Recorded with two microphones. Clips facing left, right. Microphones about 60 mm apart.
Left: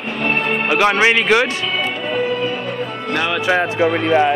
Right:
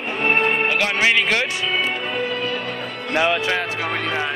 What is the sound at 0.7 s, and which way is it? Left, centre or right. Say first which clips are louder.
Speech: left 5 dB; left.